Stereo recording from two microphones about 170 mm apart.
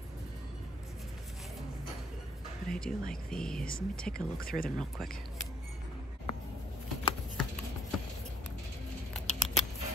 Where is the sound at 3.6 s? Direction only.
55° left (ahead or behind).